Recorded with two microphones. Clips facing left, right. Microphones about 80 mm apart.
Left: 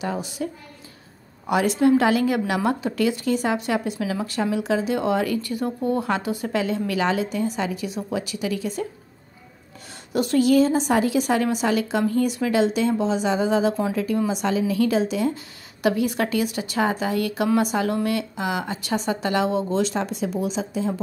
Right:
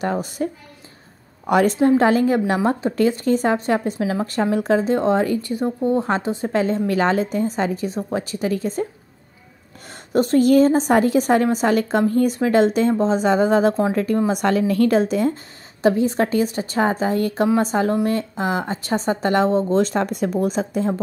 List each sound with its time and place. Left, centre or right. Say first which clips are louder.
0.0 s a woman's voice: right 5 dB; right
1.5 s a woman's voice: right 5 dB; right
1.8 s a woman's voice: right 2 dB; right
10.1 s a woman's voice: right 3 dB; right
15.8 s a woman's voice: right 4 dB; right